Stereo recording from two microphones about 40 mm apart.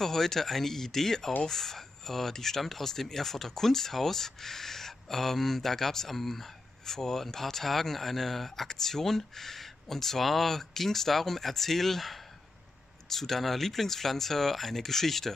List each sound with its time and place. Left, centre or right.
0.0 s speech: centre